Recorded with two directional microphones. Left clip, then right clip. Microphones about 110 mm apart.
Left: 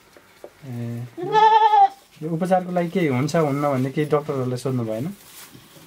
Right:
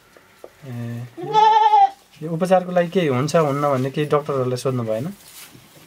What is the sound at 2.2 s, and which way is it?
Speech, 30° right (ahead or behind).